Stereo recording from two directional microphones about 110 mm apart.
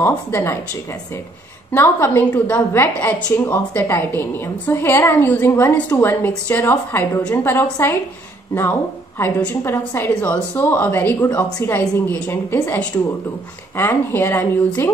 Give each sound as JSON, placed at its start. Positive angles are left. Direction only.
{"t": 0.0, "sound": "a woman's voice", "side_deg": 20}
{"t": 1.7, "sound": "a woman's voice", "side_deg": 20}
{"t": 9.2, "sound": "a woman's voice", "side_deg": 20}